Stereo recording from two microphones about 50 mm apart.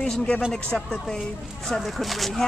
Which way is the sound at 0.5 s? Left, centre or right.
Centre.